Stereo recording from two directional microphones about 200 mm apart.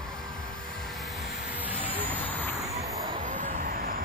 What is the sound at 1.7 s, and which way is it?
Vehicle, 10° left (ahead or behind).